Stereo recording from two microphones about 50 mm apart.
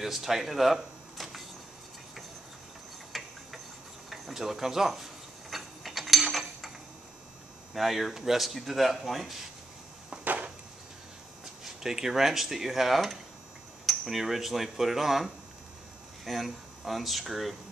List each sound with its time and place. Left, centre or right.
0.0 s speech: centre
3.1 s mechanisms: centre
4.1 s a sound: centre
7.7 s speech: centre
10.2 s a sound: right
11.6 s speech: centre